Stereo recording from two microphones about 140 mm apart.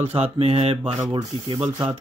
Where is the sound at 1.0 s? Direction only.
30° right (ahead or behind).